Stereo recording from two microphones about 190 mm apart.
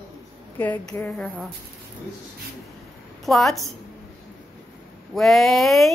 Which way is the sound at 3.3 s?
Centre (ahead or behind).